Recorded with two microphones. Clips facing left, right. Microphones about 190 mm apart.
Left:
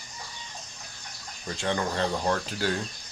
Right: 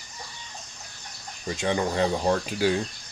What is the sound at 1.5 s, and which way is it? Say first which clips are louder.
Speech: right 3 dB; 15° right (ahead or behind).